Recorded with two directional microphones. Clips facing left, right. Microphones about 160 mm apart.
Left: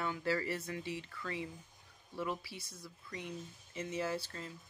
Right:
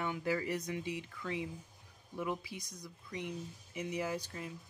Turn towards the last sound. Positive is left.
turn(degrees=-15)  # may be behind; listen again after turning